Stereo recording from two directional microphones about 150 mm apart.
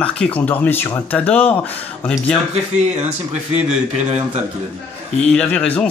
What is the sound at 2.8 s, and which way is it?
Speech, 45° right (ahead or behind).